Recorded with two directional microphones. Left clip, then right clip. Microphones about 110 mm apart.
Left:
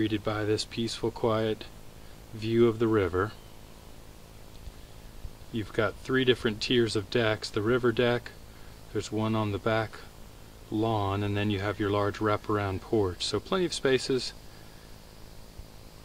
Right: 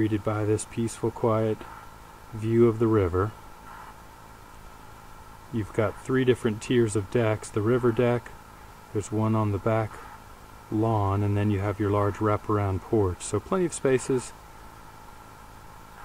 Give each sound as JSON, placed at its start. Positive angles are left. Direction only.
{"t": 0.0, "sound": "speech", "side_deg": 20}
{"t": 5.5, "sound": "speech", "side_deg": 20}